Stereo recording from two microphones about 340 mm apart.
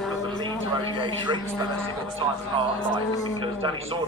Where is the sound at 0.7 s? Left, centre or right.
Centre.